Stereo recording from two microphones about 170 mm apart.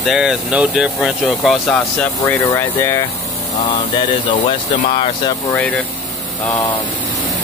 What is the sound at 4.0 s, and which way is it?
Speech, 30° left (ahead or behind).